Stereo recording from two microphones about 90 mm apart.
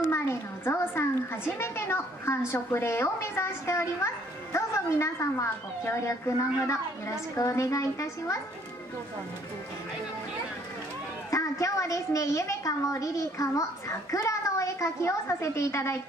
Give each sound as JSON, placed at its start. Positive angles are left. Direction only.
{"t": 0.1, "sound": "a woman's voice", "side_deg": 30}
{"t": 11.2, "sound": "a woman's voice", "side_deg": 40}